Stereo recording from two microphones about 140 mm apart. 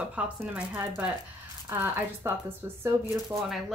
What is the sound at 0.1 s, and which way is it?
Speech, 10° right (ahead or behind).